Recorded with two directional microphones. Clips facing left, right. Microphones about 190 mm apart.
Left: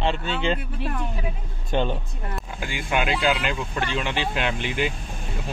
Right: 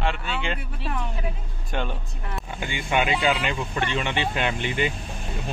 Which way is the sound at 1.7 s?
25° left (ahead or behind).